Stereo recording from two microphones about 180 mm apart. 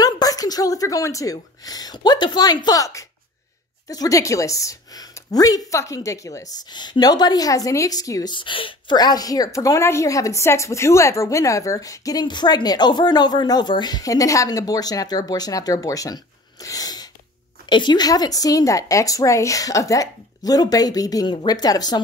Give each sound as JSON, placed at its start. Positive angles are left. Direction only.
{"t": 0.0, "sound": "a woman's voice", "side_deg": 20}
{"t": 16.6, "sound": "sneeze", "side_deg": 20}
{"t": 17.6, "sound": "a woman's voice", "side_deg": 25}